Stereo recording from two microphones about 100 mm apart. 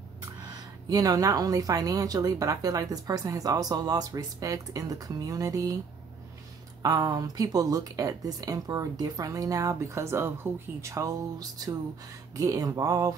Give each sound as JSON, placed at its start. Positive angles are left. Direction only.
{"t": 0.4, "sound": "a woman's voice", "side_deg": -40}
{"t": 6.8, "sound": "a woman's voice", "side_deg": -40}